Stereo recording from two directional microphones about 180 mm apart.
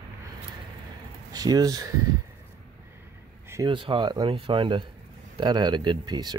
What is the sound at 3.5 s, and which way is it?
Speech, 25° right (ahead or behind).